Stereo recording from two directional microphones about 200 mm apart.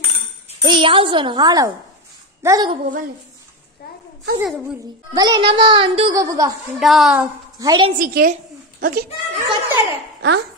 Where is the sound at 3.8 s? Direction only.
50° left (ahead or behind).